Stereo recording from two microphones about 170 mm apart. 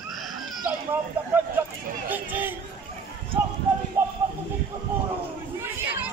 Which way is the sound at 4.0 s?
15° right (ahead or behind).